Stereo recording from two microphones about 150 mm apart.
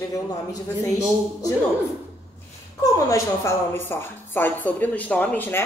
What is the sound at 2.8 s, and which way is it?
A woman's voice, 20° left (ahead or behind).